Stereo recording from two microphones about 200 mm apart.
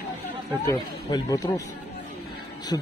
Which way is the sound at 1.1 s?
20° left (ahead or behind).